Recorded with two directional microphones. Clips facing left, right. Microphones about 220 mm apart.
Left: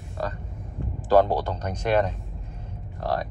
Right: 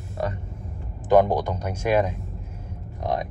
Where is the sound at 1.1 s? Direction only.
15° right (ahead or behind).